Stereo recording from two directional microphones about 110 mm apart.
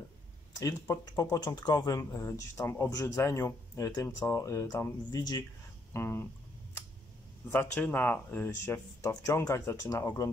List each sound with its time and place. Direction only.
0.6 s speech: 30° left (ahead or behind)
5.9 s speech: 25° left (ahead or behind)
7.5 s speech: 15° left (ahead or behind)